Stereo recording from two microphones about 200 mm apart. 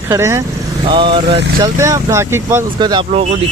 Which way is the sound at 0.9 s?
25° right (ahead or behind).